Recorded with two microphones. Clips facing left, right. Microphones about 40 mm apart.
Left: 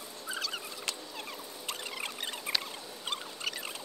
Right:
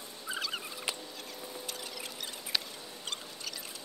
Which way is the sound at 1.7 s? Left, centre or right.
Left.